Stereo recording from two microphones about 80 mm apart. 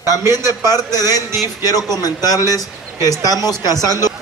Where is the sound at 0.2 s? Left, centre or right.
Right.